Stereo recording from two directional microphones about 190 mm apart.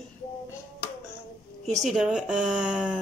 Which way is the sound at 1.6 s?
Centre (ahead or behind).